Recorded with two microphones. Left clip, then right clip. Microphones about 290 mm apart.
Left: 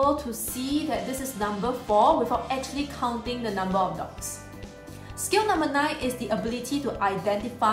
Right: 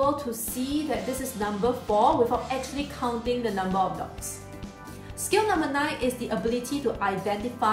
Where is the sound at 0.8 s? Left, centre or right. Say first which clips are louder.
Even; centre.